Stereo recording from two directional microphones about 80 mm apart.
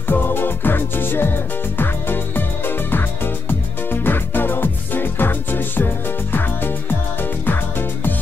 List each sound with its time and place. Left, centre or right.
0.1 s music: left